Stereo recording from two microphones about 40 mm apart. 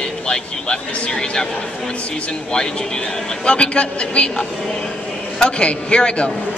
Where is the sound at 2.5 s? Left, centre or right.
Centre.